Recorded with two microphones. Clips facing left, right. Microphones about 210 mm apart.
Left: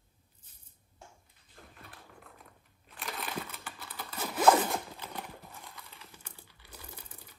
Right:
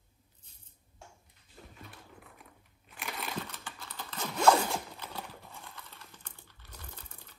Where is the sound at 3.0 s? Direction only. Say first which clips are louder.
Even; centre (ahead or behind).